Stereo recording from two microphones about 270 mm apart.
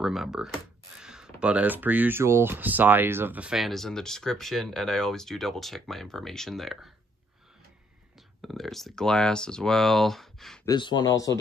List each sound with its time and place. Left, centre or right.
0.0 s speech: centre
8.4 s speech: centre
10.7 s speech: centre